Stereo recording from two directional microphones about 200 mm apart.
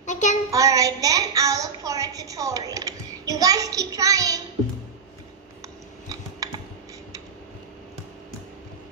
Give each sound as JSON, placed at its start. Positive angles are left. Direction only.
{"t": 0.0, "sound": "child singing", "side_deg": 35}
{"t": 0.5, "sound": "a sound", "side_deg": -15}
{"t": 6.4, "sound": "computer keyboard", "side_deg": -20}